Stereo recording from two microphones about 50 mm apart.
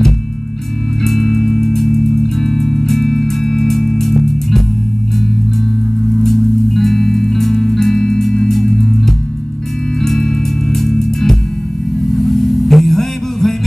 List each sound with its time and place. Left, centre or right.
1.0 s music: centre
6.2 s music: centre